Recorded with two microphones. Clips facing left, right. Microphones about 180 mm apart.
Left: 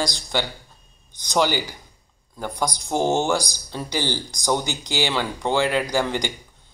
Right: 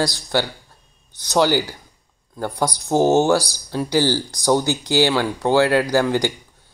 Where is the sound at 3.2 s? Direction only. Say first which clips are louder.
Right 5 dB; 15° left (ahead or behind).